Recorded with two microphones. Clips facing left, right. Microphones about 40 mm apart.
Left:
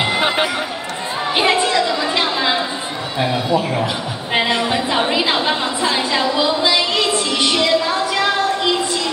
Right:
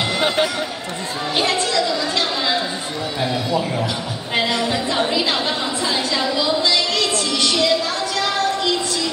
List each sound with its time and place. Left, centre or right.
0.0 s run: left
1.3 s chatter: left
3.2 s a sound: left